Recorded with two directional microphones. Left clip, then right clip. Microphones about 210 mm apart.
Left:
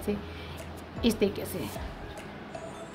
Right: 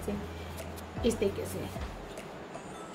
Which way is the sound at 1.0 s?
50° left (ahead or behind).